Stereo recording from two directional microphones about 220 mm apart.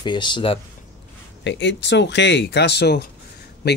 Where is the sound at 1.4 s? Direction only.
55° left (ahead or behind).